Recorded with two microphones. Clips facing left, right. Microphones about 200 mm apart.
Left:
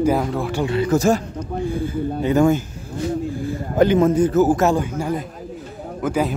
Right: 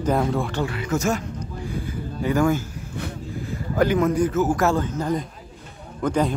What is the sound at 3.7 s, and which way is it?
Speech, 25° left (ahead or behind).